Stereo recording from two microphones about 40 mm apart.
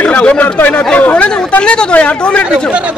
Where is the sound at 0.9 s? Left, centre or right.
Left.